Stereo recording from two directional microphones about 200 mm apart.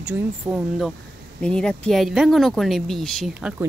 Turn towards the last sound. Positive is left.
turn(degrees=-5)  # may be behind; listen again after turning